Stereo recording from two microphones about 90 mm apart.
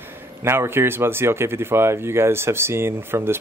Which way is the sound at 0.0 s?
25° right (ahead or behind).